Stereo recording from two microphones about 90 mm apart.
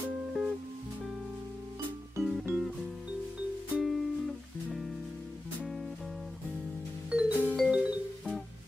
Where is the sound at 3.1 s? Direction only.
15° right (ahead or behind).